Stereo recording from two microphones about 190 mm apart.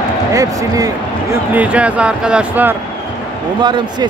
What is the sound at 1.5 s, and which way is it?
Speech, 5° right (ahead or behind).